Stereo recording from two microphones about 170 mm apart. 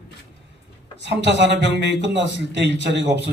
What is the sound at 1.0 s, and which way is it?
A man's voice, 90° right.